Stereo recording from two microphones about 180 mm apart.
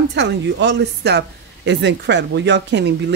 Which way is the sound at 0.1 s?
70° right (ahead or behind).